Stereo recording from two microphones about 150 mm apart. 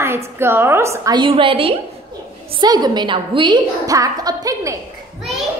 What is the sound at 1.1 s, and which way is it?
A woman's voice, 35° right (ahead or behind).